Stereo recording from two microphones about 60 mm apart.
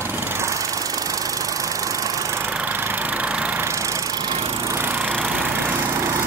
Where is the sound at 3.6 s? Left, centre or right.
Right.